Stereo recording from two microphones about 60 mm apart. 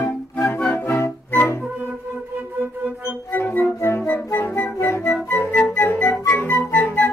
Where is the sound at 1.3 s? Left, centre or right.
Left.